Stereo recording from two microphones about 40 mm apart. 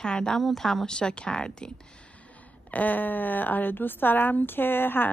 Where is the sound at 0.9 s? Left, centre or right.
Left.